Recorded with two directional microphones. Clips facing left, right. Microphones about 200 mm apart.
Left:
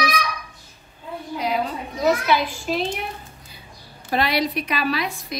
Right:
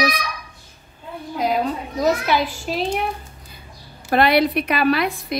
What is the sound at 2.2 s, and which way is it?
Speech, 40° right (ahead or behind).